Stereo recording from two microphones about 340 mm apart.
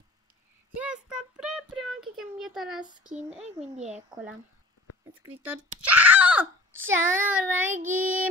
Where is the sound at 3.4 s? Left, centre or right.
Centre.